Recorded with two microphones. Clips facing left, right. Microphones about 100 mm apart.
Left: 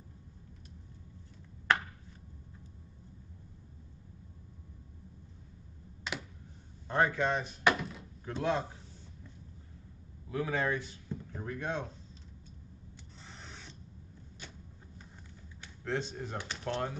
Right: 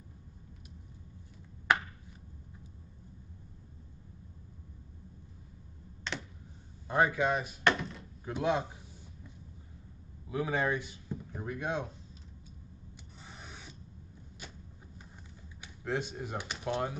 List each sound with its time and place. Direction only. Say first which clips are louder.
1.7 s a sound: right 1 dB; 10° right (ahead or behind)
6.1 s computer keyboard: even; 5° left (ahead or behind)
6.9 s a man's voice: right 1 dB; 10° right (ahead or behind)
7.6 s a sound: left 1 dB; 5° left (ahead or behind)
8.3 s a man's voice: right 1 dB; 15° right (ahead or behind)
10.3 s speech: right 1 dB; 15° right (ahead or behind)
12.9 s rub: right 1 dB; 15° right (ahead or behind)
15.6 s speech: right 1 dB; 10° right (ahead or behind)